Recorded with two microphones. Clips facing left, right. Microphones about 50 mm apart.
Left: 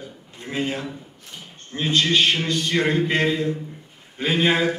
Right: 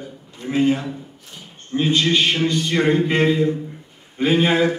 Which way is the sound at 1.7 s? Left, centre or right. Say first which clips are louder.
Right 2 dB; centre.